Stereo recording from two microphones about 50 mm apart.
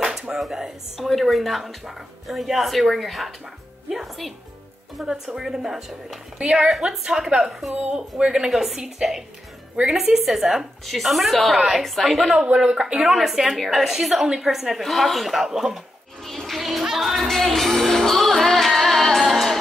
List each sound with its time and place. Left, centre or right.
0.0 s a woman's voice: centre
6.3 s a woman's voice: centre
8.5 s a woman's voice: centre
16.3 s music: centre